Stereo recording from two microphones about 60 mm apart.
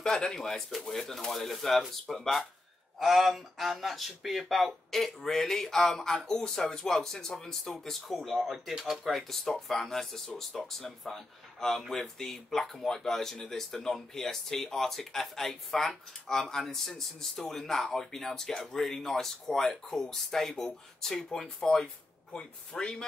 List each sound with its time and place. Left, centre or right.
0.0 s speech: centre